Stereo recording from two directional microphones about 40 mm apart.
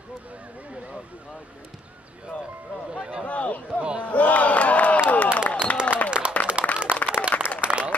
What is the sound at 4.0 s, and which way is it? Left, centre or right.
Battle cry, left.